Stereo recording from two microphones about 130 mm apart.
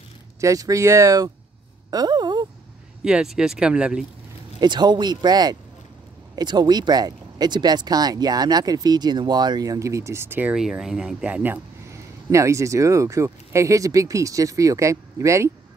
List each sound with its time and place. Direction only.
0.4 s speech: 25° right (ahead or behind)
3.0 s speech: 5° right (ahead or behind)
4.6 s speech: 35° right (ahead or behind); by 10.5 s 15° right (ahead or behind)
10.5 s speech: 5° right (ahead or behind)
12.3 s speech: 25° right (ahead or behind)